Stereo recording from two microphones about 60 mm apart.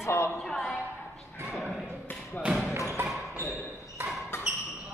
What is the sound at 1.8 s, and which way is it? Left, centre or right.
Basketball bounce, left.